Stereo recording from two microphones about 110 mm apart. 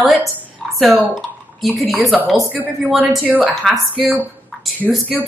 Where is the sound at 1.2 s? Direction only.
Centre (ahead or behind).